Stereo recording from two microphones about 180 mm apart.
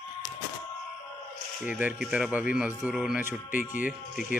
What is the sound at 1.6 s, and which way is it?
Speech, 5° right (ahead or behind).